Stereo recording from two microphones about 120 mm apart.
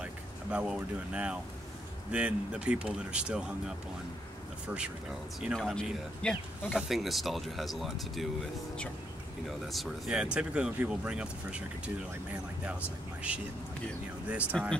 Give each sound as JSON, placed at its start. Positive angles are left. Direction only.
{"t": 0.0, "sound": "speech", "side_deg": -10}
{"t": 5.4, "sound": "speech", "side_deg": 0}
{"t": 9.5, "sound": "speech", "side_deg": 0}
{"t": 13.3, "sound": "speech", "side_deg": -10}
{"t": 14.5, "sound": "speech", "side_deg": 5}